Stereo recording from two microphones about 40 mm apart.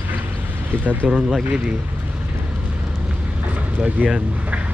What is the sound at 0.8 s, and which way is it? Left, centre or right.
Speech, right.